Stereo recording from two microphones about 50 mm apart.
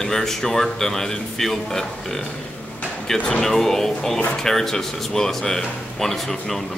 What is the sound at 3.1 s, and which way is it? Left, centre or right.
Speech, centre.